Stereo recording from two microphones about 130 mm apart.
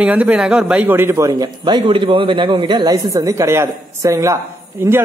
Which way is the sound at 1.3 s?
30° right (ahead or behind).